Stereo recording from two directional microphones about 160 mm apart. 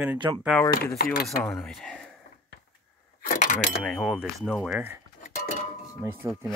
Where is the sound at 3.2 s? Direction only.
55° left (ahead or behind).